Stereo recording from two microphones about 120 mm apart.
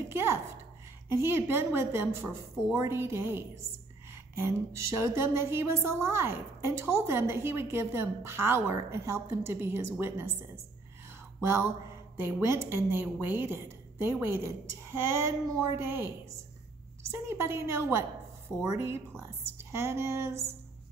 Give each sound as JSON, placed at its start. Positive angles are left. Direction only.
{"t": 0.1, "sound": "a child's voice", "side_deg": -20}
{"t": 11.4, "sound": "a woman's voice", "side_deg": -20}
{"t": 17.1, "sound": "a woman's voice", "side_deg": -20}